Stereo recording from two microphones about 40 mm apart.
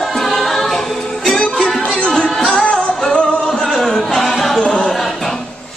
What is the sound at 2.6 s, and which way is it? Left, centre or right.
Music, left.